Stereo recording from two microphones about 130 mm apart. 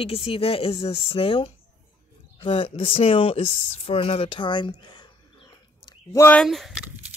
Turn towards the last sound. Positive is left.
turn(degrees=-5)  # may be behind; listen again after turning